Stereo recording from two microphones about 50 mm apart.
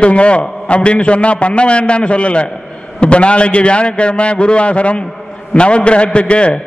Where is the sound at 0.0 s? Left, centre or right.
Left.